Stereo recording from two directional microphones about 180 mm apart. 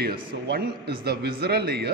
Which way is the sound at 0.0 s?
60° right (ahead or behind).